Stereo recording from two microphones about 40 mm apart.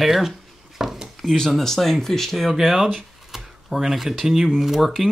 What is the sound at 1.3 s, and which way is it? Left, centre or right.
Speech, centre.